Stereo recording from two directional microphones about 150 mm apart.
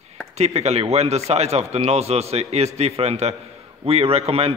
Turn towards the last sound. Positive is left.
turn(degrees=-40)  # may be behind; listen again after turning